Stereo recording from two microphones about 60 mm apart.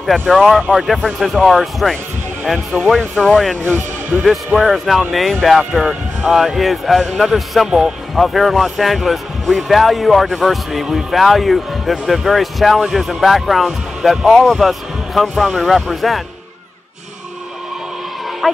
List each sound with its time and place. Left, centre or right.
0.3 s a man's voice: centre
2.9 s speech: centre
3.6 s speech: right
4.6 s a man's voice: centre
14.3 s a man's voice: centre
18.4 s speech: centre